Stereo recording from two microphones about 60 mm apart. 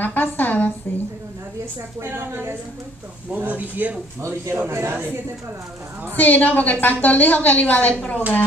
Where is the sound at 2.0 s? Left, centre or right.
Right.